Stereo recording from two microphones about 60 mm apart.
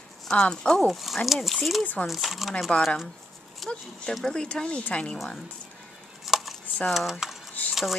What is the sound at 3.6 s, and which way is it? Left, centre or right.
Speech, centre.